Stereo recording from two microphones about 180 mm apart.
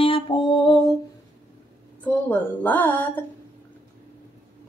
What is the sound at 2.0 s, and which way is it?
Speech, 10° left (ahead or behind).